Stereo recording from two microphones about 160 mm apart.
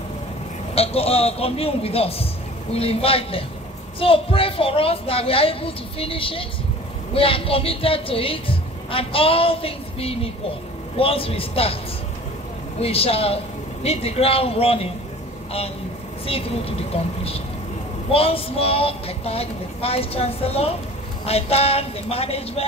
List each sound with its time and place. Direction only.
0.7 s a woman's voice: 40° left (ahead or behind)
12.8 s a woman's voice: 35° left (ahead or behind)
16.3 s a woman's voice: 35° left (ahead or behind)